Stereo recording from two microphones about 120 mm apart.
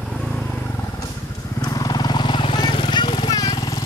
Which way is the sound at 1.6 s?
30° left (ahead or behind).